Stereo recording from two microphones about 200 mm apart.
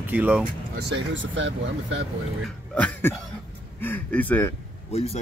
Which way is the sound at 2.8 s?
10° left (ahead or behind).